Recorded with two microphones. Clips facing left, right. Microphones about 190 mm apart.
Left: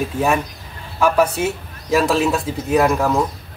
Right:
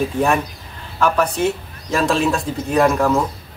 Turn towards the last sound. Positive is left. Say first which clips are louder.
# even
turn(degrees=5)  # may be behind; listen again after turning